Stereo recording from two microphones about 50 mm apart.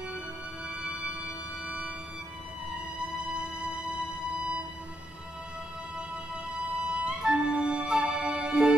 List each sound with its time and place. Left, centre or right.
6.8 s music: right